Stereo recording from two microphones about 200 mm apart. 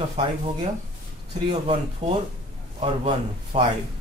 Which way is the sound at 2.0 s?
25° right (ahead or behind).